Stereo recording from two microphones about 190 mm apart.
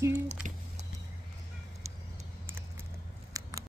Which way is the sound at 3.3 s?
15° right (ahead or behind).